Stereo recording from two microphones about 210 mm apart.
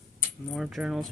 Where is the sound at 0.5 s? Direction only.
Centre (ahead or behind).